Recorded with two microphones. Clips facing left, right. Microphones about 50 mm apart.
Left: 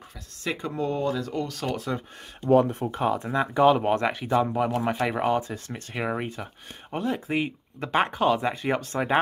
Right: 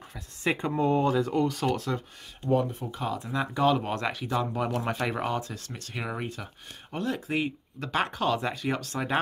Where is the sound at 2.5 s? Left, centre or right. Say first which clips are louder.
Left 6 dB; left.